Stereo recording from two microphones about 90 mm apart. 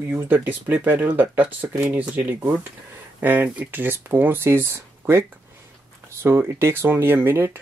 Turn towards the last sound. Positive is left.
turn(degrees=-20)  # may be behind; listen again after turning